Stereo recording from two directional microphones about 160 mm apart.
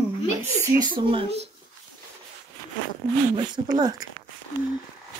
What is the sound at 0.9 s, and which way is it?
Speech, 35° right (ahead or behind).